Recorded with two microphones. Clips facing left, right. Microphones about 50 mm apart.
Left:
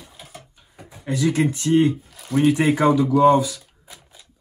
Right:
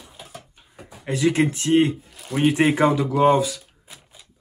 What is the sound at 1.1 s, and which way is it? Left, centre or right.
Speech, right.